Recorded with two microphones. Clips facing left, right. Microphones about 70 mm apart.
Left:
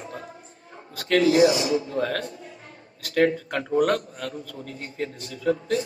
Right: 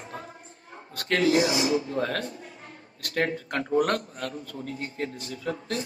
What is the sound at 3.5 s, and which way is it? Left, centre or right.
A man's voice, right.